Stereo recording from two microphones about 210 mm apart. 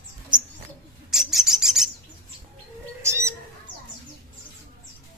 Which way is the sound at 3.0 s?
15° right (ahead or behind).